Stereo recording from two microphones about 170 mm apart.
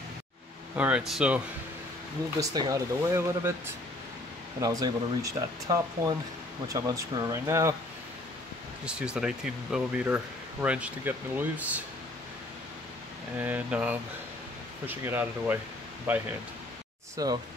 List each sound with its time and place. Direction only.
0.7 s speech: 5° right (ahead or behind)
2.4 s speech: 20° right (ahead or behind)
8.8 s speech: 5° right (ahead or behind)
13.4 s speech: 10° right (ahead or behind)